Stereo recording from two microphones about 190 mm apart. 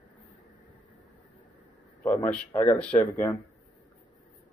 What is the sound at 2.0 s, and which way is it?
Speech, 5° left (ahead or behind).